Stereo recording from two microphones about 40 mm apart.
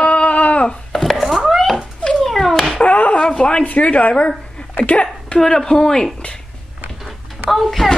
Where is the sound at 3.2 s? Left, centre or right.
Left.